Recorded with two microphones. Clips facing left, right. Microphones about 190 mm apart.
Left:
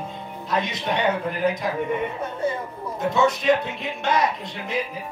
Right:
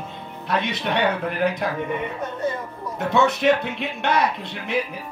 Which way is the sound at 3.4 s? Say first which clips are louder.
Right 1 dB; 65° right (ahead or behind).